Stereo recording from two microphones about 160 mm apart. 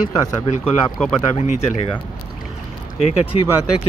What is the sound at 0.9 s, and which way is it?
Speech, 5° left (ahead or behind).